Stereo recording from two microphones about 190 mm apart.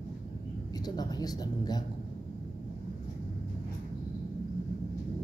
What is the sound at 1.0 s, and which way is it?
Speech, 20° left (ahead or behind).